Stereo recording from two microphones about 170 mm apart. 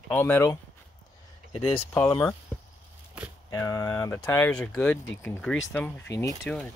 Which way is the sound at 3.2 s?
5° right (ahead or behind).